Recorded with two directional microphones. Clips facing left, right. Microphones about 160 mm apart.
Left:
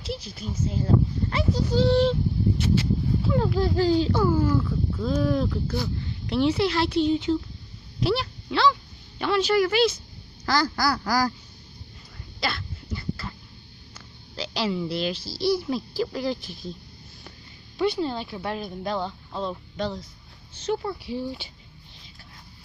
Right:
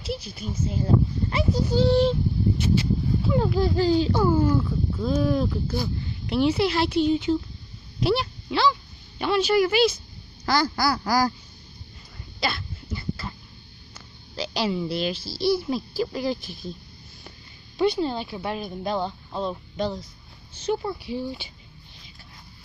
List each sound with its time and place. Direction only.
0.0 s speech: 10° right (ahead or behind)
4.2 s speech: 25° right (ahead or behind)
12.4 s cough: 15° right (ahead or behind)
13.9 s a sound: 15° right (ahead or behind)
16.0 s speech: 10° right (ahead or behind)
17.7 s speech: 20° right (ahead or behind)
21.0 s speech: centre (ahead or behind)